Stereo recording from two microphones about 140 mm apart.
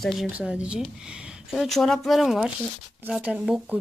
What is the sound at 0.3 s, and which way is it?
Speech, 10° right (ahead or behind).